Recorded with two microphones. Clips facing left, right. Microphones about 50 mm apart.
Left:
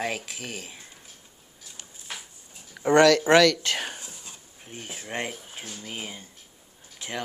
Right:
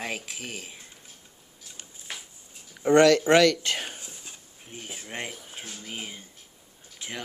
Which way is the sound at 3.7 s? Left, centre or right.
Centre.